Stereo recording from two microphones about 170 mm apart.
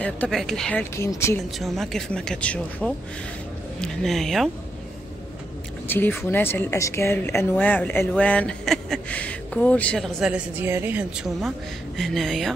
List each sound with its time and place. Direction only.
0.0 s speech: 5° left (ahead or behind)
0.9 s a woman's voice: 15° left (ahead or behind)
1.6 s speech: centre (ahead or behind)
5.9 s a woman's voice: 10° left (ahead or behind)